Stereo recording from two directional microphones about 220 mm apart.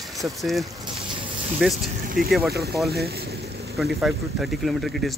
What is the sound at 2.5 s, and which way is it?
Speech, 45° right (ahead or behind).